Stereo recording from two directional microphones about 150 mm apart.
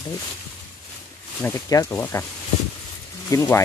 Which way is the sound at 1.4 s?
20° left (ahead or behind).